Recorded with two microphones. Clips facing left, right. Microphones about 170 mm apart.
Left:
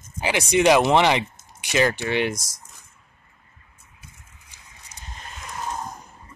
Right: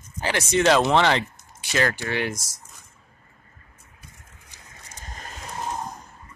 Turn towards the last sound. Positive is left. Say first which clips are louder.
# right 1 dB
turn(degrees=-40)  # may be behind; listen again after turning